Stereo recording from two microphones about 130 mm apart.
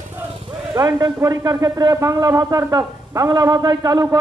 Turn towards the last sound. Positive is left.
turn(degrees=-30)  # may be behind; listen again after turning